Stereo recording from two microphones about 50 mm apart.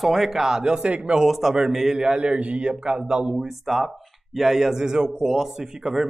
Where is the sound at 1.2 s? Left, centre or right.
Centre.